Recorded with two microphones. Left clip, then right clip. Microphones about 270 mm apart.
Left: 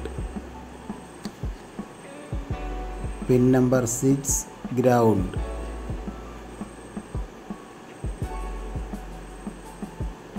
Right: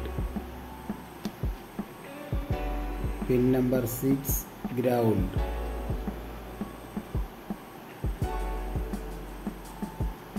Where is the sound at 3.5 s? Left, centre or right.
Left.